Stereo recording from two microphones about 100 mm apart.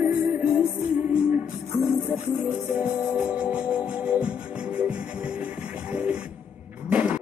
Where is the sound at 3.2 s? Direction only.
10° right (ahead or behind).